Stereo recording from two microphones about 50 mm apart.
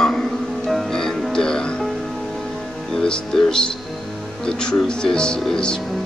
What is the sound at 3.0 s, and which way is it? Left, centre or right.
Speech, centre.